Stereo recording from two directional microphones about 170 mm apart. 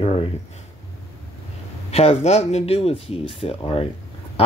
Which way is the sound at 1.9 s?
35° left (ahead or behind).